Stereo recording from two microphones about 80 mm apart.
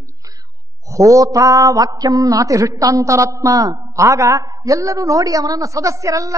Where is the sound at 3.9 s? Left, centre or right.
Right.